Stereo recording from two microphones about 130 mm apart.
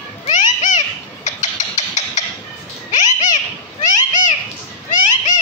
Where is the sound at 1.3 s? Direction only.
65° left (ahead or behind).